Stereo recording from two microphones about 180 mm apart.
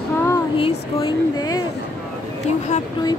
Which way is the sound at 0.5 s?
30° left (ahead or behind).